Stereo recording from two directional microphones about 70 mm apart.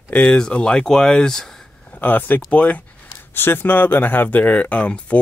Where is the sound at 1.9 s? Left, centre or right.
Left.